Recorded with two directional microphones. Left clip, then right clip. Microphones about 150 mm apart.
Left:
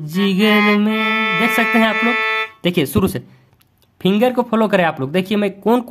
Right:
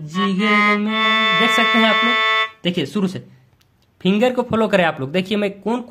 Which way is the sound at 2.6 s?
35° left (ahead or behind).